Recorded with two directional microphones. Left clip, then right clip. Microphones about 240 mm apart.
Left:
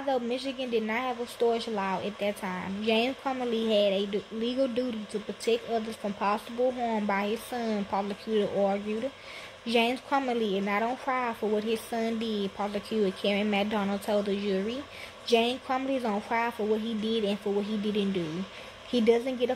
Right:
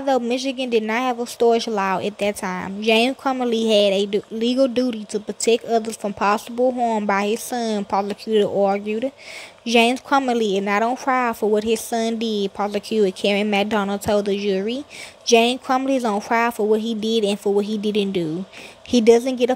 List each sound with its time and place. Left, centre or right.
0.0 s a woman's voice: right